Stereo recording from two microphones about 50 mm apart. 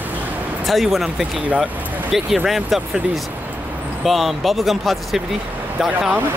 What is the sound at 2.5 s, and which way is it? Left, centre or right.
Speech, centre.